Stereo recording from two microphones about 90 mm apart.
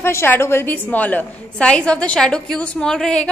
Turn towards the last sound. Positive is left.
turn(degrees=5)  # may be behind; listen again after turning